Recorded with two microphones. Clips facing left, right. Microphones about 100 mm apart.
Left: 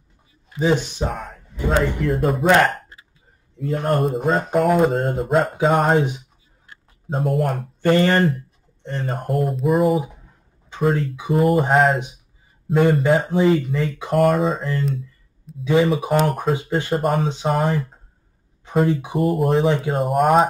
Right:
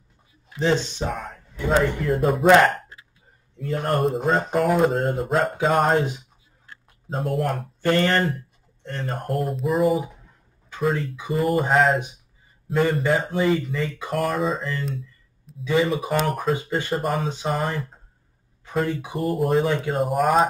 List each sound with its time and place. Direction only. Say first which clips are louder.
0.5 s speech: left 2 dB; 10° left (ahead or behind)
7.1 s speech: left 3 dB; centre (ahead or behind)
7.9 s speech: left 4 dB; 15° left (ahead or behind)
8.8 s speech: left 3 dB; centre (ahead or behind)
16.5 s speech: left 3 dB; 20° left (ahead or behind)
16.9 s speech: left 5 dB; centre (ahead or behind)
19.1 s speech: left 1 dB; centre (ahead or behind)